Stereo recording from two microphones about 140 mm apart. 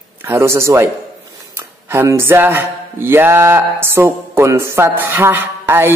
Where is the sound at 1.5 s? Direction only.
20° right (ahead or behind).